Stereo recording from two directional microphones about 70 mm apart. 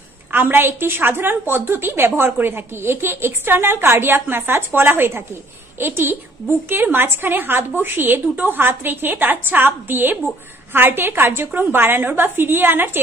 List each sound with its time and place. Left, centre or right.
0.3 s a woman's voice: right